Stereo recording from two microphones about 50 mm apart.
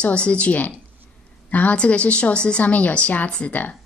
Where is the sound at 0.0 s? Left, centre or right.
Left.